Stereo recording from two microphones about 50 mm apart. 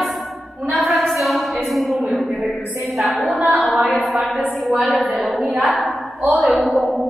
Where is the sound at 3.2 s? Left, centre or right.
Right.